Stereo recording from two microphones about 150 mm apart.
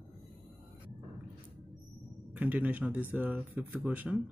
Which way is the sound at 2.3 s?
10° right (ahead or behind).